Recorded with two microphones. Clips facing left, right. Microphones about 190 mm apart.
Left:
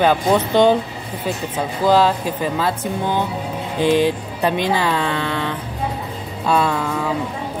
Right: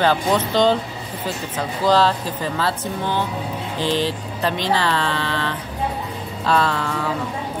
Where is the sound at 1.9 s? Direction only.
15° left (ahead or behind).